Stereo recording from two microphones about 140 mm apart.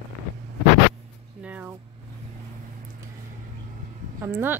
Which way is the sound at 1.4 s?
10° right (ahead or behind).